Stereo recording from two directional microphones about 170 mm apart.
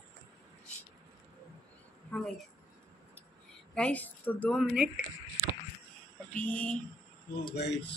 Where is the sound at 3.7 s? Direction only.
5° left (ahead or behind).